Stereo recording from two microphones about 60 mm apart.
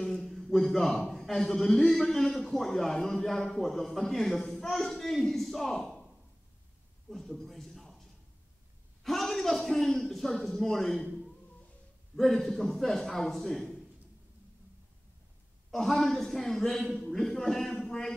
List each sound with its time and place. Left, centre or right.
0.0 s a sound: centre
1.1 s a man's voice: centre
7.1 s a man's voice: centre
12.2 s a man's voice: centre
15.7 s a man's voice: centre
17.8 s a sound: centre